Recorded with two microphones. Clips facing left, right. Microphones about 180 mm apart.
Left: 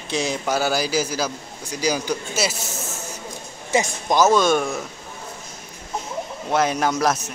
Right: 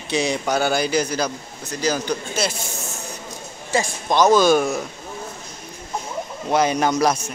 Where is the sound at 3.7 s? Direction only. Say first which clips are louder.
Left 1 dB; 20° left (ahead or behind).